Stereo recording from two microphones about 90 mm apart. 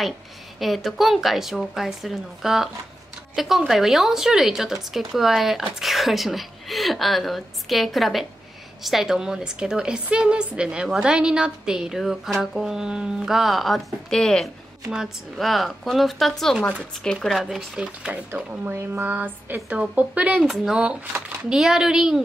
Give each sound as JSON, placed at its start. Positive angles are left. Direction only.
{"t": 0.6, "sound": "a woman's voice", "side_deg": 0}
{"t": 17.7, "sound": "a woman's voice", "side_deg": -15}
{"t": 20.4, "sound": "a woman's voice", "side_deg": -5}